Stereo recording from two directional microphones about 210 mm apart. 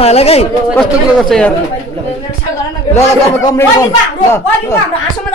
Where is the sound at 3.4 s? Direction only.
15° left (ahead or behind).